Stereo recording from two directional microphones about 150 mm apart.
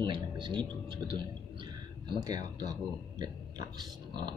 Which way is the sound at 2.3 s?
25° right (ahead or behind).